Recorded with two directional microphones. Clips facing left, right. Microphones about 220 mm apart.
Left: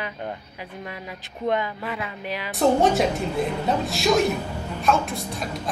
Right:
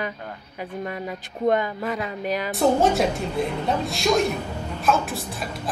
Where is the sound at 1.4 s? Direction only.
45° right (ahead or behind).